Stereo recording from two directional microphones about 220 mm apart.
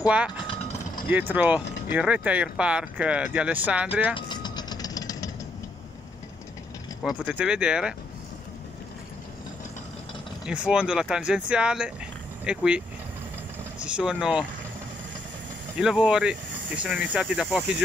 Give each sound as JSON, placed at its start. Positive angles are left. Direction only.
{"t": 1.0, "sound": "speech", "side_deg": -5}
{"t": 4.1, "sound": "vehicle", "side_deg": 20}
{"t": 7.0, "sound": "speech", "side_deg": -5}
{"t": 10.4, "sound": "speech", "side_deg": -5}
{"t": 13.8, "sound": "speech", "side_deg": -5}
{"t": 15.8, "sound": "speech", "side_deg": -5}